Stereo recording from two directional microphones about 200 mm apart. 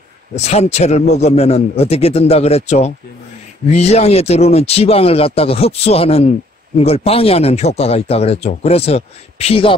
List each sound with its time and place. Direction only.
0.4 s speech: 35° left (ahead or behind)